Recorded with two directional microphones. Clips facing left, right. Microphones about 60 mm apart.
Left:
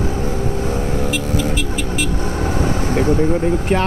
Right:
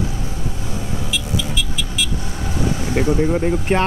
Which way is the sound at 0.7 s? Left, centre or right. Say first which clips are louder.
Left 6 dB; left.